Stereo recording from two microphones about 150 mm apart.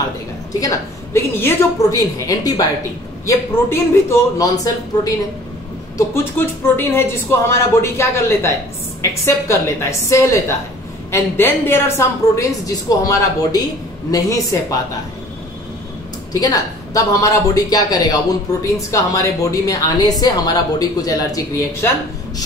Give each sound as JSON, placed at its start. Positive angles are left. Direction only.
{"t": 0.5, "sound": "a man's voice", "side_deg": 25}
{"t": 5.9, "sound": "a man's voice", "side_deg": 15}
{"t": 16.3, "sound": "a man's voice", "side_deg": 25}